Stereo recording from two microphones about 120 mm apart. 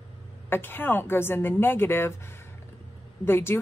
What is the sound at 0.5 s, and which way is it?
A woman's voice, 15° left (ahead or behind).